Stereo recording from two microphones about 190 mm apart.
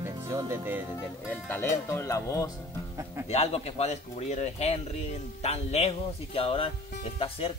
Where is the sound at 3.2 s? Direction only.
35° left (ahead or behind).